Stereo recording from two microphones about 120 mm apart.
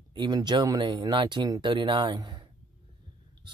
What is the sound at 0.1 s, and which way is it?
Speech, 35° right (ahead or behind).